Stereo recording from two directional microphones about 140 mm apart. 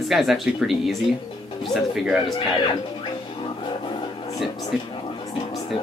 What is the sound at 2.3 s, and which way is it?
Music, 40° left (ahead or behind).